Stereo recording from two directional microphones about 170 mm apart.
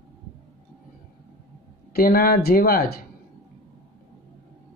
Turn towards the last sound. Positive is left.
turn(degrees=60)  # may be behind; listen again after turning